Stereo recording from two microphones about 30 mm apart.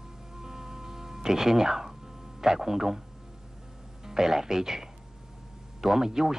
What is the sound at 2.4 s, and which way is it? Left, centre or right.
Speech, centre.